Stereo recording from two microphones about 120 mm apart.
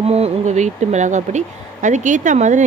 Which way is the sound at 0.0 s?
60° right (ahead or behind).